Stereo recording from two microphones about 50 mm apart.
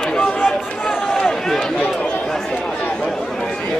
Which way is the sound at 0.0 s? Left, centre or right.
Centre.